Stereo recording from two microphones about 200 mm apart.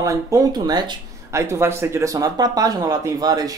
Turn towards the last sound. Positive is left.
turn(degrees=-20)  # may be behind; listen again after turning